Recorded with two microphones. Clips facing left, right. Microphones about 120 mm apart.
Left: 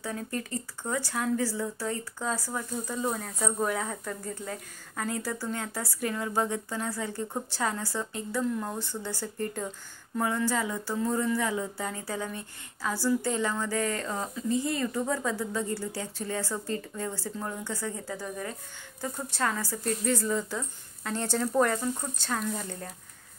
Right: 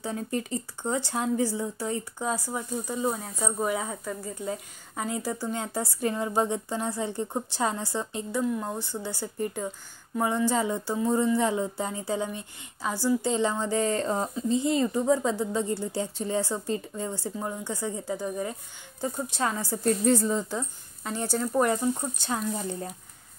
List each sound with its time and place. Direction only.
0.0 s speech: 20° right (ahead or behind)
19.8 s speech: 30° right (ahead or behind)